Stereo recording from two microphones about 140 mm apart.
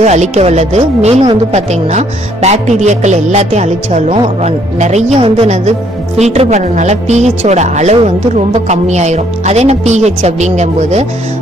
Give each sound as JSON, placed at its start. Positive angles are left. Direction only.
{"t": 0.0, "sound": "a woman's voice", "side_deg": -55}